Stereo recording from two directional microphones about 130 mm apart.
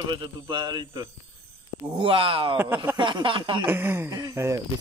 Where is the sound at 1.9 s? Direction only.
40° right (ahead or behind).